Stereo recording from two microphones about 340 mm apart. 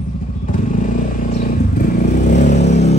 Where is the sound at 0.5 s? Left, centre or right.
Left.